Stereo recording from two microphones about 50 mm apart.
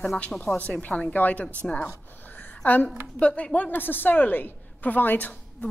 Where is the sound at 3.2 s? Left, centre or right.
Left.